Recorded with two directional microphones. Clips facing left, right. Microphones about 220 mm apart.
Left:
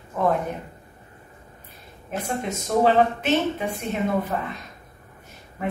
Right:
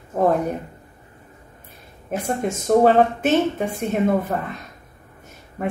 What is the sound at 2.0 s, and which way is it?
Speech, 45° right (ahead or behind).